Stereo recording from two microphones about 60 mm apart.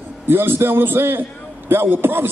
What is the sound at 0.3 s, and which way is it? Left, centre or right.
A man's voice, right.